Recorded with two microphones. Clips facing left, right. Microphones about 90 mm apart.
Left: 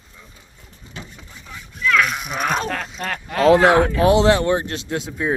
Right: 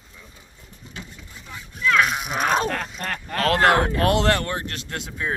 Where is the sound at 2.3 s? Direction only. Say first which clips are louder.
Even; 5° right (ahead or behind).